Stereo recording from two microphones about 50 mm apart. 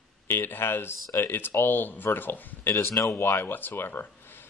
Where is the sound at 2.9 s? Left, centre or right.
Left.